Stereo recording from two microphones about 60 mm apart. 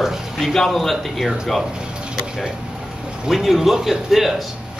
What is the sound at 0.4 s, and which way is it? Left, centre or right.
Speech, centre.